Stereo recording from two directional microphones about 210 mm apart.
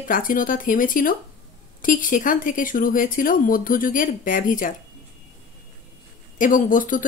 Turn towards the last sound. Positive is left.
turn(degrees=40)  # may be behind; listen again after turning